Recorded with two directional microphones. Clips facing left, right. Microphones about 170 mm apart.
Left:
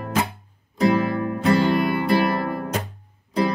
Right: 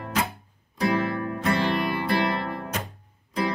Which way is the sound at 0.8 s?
25° left (ahead or behind).